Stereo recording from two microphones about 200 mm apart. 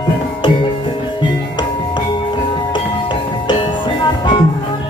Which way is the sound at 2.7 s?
25° left (ahead or behind).